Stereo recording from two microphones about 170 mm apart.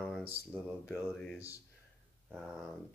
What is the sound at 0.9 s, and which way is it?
Speech, 5° left (ahead or behind).